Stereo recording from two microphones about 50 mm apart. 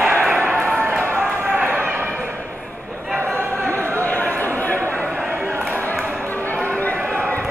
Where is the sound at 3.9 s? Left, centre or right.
Left.